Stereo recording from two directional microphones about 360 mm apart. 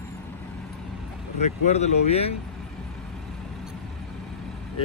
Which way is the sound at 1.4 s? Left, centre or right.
Centre.